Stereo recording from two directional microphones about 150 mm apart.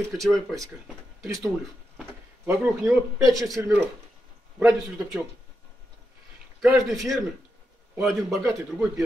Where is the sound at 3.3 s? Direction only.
Centre (ahead or behind).